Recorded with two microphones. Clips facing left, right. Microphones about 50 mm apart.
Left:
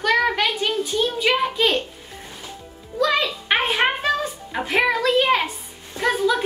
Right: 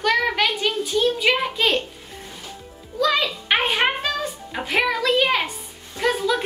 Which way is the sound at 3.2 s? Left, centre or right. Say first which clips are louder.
Even; centre.